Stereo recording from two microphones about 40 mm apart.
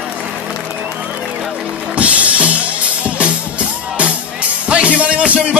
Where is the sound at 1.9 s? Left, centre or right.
Right.